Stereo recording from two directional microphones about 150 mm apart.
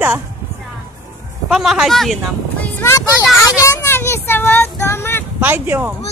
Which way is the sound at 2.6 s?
15° left (ahead or behind).